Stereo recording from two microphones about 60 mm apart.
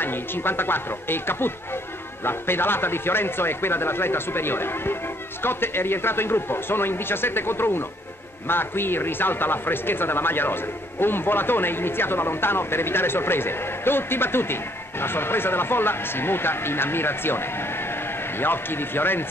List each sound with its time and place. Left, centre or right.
0.0 s speech: left